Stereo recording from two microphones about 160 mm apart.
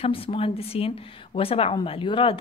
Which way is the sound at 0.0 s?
35° left (ahead or behind).